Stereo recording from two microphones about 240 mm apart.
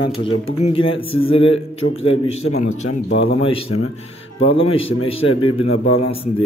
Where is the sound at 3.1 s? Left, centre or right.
Left.